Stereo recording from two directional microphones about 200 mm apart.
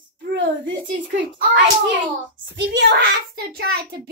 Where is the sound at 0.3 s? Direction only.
65° right (ahead or behind).